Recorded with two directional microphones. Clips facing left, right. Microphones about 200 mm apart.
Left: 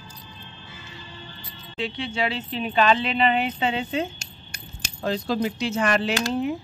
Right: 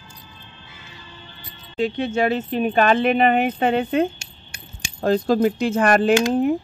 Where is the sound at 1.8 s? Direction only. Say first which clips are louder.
Right 7 dB; 45° right (ahead or behind).